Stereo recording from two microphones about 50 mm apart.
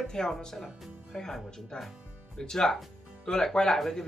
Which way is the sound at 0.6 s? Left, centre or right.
Centre.